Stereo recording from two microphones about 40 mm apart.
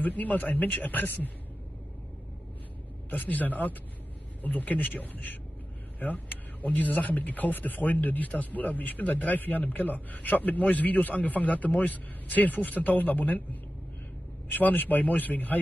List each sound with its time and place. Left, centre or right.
0.0 s a man's voice: left
3.1 s a man's voice: left